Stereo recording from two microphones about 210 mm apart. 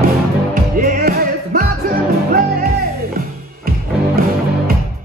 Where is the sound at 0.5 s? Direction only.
40° right (ahead or behind).